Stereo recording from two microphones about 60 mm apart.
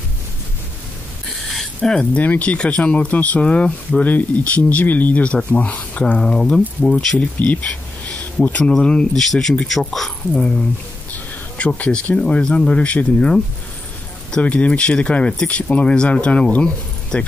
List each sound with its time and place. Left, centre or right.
1.5 s a sound: centre
2.1 s speech: left
3.4 s speech: centre
4.0 s speech: left
6.1 s speech: centre
7.2 s speech: left
8.8 s speech: centre
11.5 s speech: left